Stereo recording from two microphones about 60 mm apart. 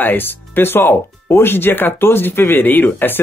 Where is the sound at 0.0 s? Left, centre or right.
Left.